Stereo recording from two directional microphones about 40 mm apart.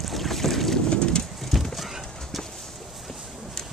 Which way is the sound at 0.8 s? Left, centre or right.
Left.